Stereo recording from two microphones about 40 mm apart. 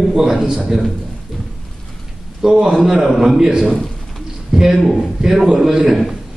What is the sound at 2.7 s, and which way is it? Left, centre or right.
Speech, centre.